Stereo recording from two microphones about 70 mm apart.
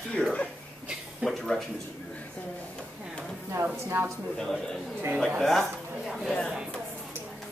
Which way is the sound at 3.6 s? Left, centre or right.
Right.